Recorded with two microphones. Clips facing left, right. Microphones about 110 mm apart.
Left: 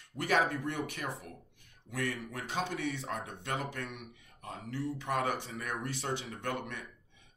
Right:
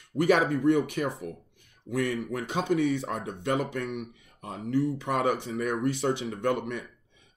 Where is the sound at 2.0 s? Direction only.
25° right (ahead or behind).